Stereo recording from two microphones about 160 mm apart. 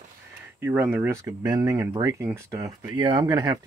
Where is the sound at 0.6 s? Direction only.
15° right (ahead or behind).